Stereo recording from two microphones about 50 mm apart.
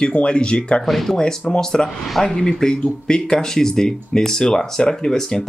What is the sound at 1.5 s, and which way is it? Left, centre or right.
Speech, centre.